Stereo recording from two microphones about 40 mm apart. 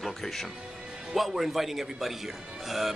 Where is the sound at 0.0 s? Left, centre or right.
Centre.